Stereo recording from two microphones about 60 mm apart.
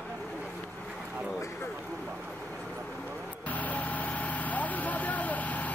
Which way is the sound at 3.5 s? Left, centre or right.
Left.